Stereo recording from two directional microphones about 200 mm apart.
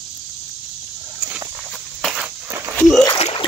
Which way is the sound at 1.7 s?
Centre (ahead or behind).